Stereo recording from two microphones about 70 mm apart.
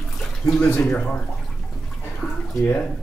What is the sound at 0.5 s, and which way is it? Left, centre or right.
Speech, centre.